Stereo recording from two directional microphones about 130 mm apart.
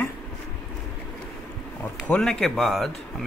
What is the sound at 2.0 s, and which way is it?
Speech, 5° left (ahead or behind).